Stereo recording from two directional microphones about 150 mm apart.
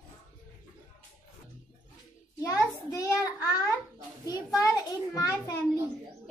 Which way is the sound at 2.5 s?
20° left (ahead or behind).